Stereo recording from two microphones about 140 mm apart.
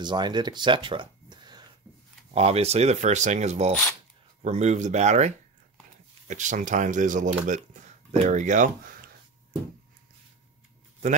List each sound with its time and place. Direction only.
0.0 s speech: 30° right (ahead or behind)
2.3 s speech: 45° right (ahead or behind); by 8.9 s 65° right (ahead or behind)